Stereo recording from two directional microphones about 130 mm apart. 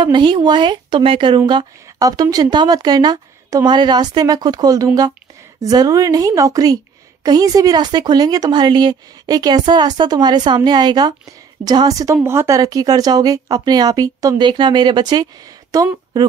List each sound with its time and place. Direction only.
0.0 s speech: 35° right (ahead or behind)